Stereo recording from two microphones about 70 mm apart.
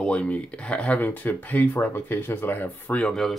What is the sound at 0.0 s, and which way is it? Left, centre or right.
Speech, centre.